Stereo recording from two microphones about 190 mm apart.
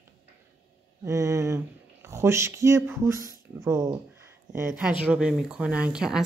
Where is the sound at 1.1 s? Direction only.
15° right (ahead or behind).